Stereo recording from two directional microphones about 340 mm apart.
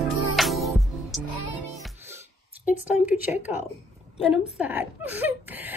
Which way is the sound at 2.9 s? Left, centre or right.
Centre.